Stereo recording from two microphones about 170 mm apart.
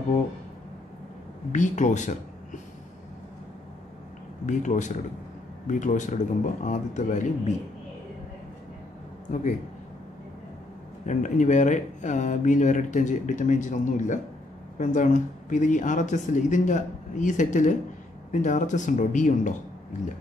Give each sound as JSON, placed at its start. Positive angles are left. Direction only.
{"t": 1.5, "sound": "speech", "side_deg": 45}
{"t": 4.5, "sound": "speech", "side_deg": 45}
{"t": 11.1, "sound": "speech", "side_deg": 50}